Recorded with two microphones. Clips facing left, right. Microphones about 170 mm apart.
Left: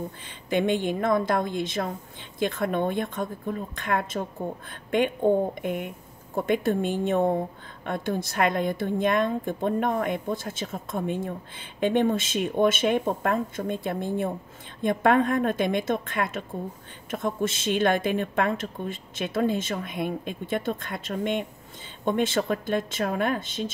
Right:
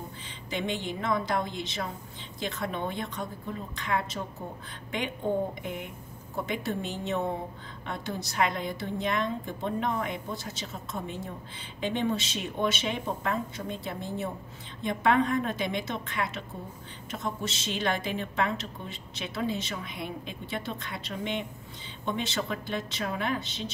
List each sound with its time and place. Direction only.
0.5 s a woman's voice: 55° left (ahead or behind)